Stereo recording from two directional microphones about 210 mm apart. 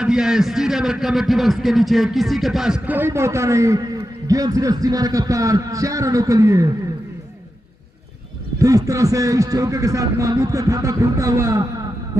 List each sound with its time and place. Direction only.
0.0 s a man's voice: centre (ahead or behind)
8.5 s a man's voice: 15° right (ahead or behind)